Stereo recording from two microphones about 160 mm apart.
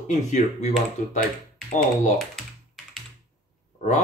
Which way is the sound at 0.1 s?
50° left (ahead or behind).